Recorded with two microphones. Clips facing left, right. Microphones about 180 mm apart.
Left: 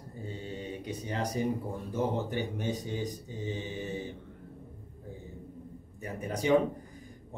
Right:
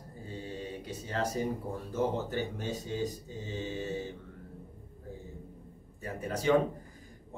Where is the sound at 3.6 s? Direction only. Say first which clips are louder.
Right 1 dB; 20° left (ahead or behind).